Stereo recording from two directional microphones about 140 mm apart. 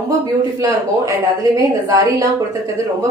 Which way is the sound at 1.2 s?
25° right (ahead or behind).